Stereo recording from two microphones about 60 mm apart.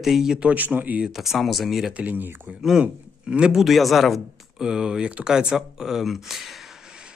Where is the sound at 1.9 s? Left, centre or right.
Right.